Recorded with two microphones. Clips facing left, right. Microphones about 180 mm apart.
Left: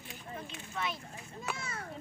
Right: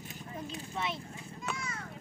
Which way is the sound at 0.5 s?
25° right (ahead or behind).